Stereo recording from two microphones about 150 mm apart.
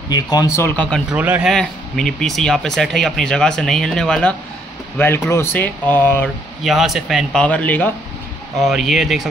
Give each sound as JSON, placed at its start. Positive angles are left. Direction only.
{"t": 0.1, "sound": "speech", "side_deg": 25}
{"t": 1.1, "sound": "a man's voice", "side_deg": -10}
{"t": 1.5, "sound": "speech", "side_deg": 5}
{"t": 6.6, "sound": "speech", "side_deg": 0}
{"t": 7.4, "sound": "speech", "side_deg": 10}
{"t": 8.5, "sound": "speech", "side_deg": 0}